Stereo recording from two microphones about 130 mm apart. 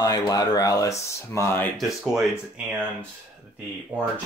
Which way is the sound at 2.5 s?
10° right (ahead or behind).